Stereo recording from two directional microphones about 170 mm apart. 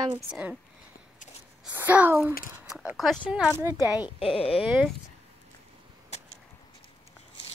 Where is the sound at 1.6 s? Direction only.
10° right (ahead or behind).